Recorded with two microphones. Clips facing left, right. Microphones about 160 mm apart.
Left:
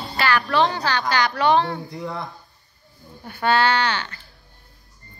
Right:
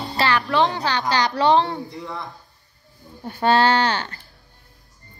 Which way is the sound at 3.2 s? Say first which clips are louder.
Right 2 dB; 30° right (ahead or behind).